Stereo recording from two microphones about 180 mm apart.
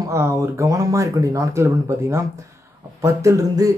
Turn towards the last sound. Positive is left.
turn(degrees=-20)  # may be behind; listen again after turning